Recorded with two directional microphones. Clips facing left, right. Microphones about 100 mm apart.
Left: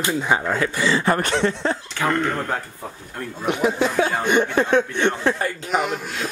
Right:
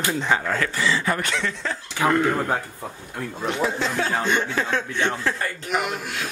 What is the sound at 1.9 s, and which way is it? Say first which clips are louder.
Speech: right 5 dB; 10° right (ahead or behind).